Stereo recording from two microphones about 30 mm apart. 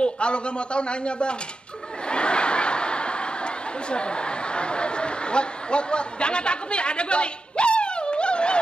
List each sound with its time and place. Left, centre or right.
0.0 s a man's voice: left
2.0 s snicker: left